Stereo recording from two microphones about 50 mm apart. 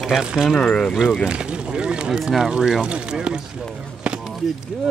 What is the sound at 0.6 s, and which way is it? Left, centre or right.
Speech, centre.